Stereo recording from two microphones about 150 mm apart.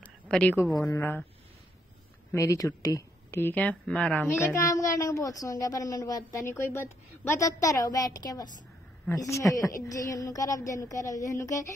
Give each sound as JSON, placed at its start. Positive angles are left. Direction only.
{"t": 0.3, "sound": "speech", "side_deg": 10}
{"t": 2.3, "sound": "a woman's voice", "side_deg": 20}